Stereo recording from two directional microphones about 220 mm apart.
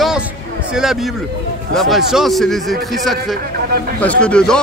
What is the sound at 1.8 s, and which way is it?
Speech, centre (ahead or behind).